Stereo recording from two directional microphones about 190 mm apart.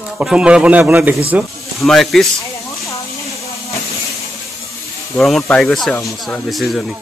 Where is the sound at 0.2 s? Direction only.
5° right (ahead or behind).